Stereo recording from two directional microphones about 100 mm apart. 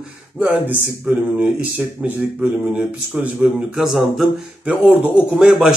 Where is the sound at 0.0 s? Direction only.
15° right (ahead or behind).